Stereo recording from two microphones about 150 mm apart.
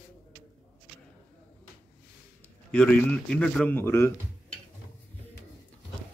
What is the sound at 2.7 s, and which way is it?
A man's voice, 5° left (ahead or behind).